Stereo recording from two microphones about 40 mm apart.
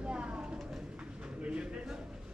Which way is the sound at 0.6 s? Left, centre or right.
Centre.